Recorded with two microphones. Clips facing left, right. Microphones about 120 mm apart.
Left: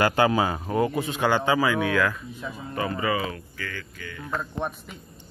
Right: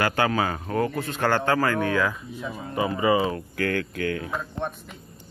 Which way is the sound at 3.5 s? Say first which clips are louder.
Right 11 dB; 60° right (ahead or behind).